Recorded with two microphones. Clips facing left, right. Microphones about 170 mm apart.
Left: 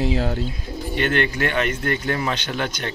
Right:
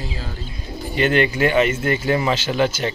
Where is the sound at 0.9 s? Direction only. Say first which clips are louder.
Right 4 dB; 5° right (ahead or behind).